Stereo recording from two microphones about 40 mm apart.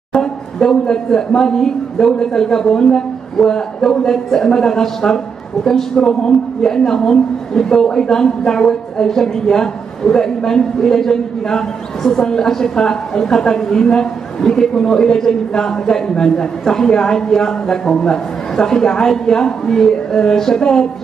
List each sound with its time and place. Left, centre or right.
0.1 s speech: centre